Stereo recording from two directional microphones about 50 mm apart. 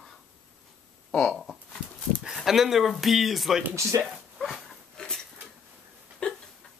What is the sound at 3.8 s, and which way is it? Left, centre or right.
Speech, right.